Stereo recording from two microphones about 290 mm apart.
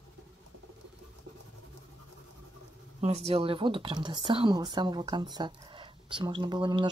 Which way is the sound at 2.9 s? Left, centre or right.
Right.